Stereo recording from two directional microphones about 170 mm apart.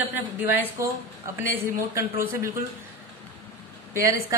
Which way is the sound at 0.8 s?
15° right (ahead or behind).